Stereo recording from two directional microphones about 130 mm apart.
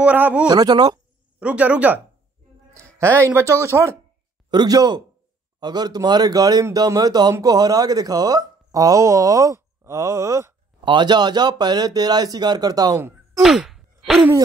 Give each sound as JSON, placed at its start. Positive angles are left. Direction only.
{"t": 0.0, "sound": "speech", "side_deg": -10}
{"t": 0.5, "sound": "speech", "side_deg": -35}
{"t": 1.4, "sound": "speech", "side_deg": -10}
{"t": 3.0, "sound": "speech", "side_deg": -20}
{"t": 4.5, "sound": "speech", "side_deg": -30}
{"t": 10.8, "sound": "speech", "side_deg": -35}
{"t": 13.4, "sound": "sigh", "side_deg": -5}